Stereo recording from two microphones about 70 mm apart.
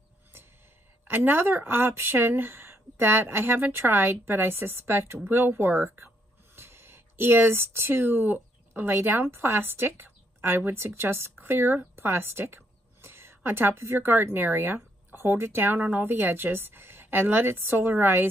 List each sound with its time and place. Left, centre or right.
1.0 s a woman's voice: right